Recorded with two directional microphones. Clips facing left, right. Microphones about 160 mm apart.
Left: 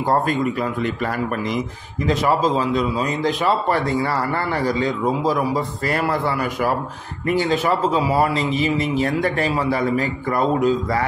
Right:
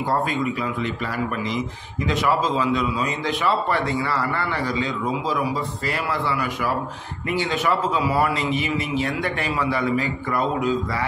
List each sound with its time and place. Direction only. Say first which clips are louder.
0.1 s a man's voice: left 4 dB; 45° left (ahead or behind)
2.0 s a man's voice: left 3 dB; 40° left (ahead or behind)